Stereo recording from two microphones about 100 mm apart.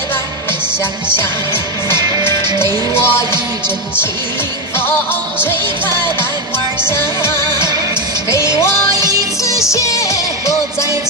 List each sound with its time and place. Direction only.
1.1 s music: 25° left (ahead or behind)
6.9 s music: 25° left (ahead or behind)